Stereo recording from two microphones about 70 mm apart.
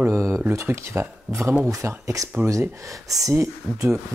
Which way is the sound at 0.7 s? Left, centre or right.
Right.